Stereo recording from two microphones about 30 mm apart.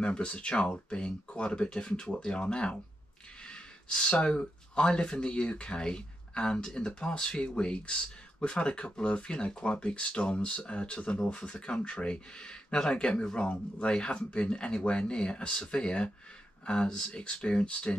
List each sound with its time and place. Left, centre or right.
0.0 s speech: left
17.6 s speech: left